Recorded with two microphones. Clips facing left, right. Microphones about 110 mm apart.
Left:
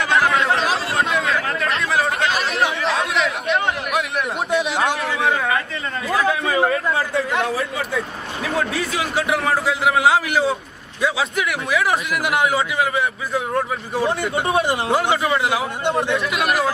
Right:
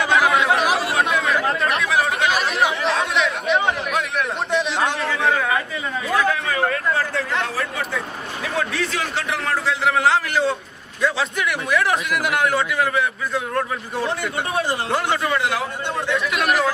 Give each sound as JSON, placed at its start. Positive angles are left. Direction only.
{"t": 0.1, "sound": "chatter", "side_deg": -5}
{"t": 4.5, "sound": "a man's voice", "side_deg": 5}
{"t": 6.2, "sound": "a man's voice", "side_deg": 15}
{"t": 8.7, "sound": "a man's voice", "side_deg": 10}
{"t": 14.2, "sound": "speech", "side_deg": 25}
{"t": 14.9, "sound": "a man's voice", "side_deg": 5}